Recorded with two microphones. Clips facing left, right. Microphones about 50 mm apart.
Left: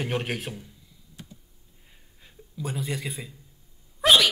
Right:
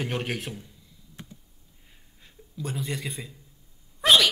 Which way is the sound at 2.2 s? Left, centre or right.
Centre.